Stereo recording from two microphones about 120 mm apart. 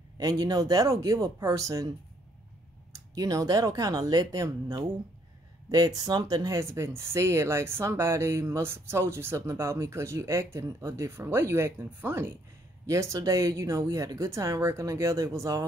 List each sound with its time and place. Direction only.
0.2 s speech: 30° right (ahead or behind)
2.9 s speech: 30° right (ahead or behind)